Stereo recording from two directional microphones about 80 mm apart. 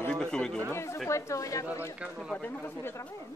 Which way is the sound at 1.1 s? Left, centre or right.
Left.